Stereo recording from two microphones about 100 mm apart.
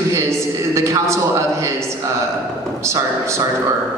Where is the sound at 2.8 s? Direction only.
30° right (ahead or behind).